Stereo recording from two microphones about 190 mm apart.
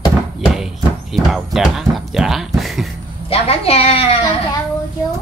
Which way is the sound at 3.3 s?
30° left (ahead or behind).